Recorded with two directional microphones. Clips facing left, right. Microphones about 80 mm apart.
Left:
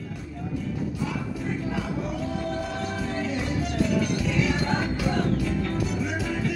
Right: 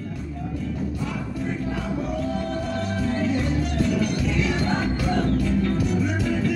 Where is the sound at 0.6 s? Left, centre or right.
Centre.